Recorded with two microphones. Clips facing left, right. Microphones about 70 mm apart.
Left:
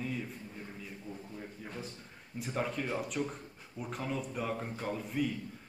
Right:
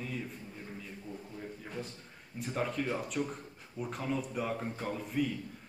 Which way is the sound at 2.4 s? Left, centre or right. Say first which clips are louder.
Right 1 dB; centre.